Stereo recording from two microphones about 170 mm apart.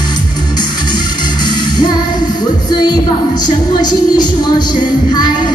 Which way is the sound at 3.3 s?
25° left (ahead or behind).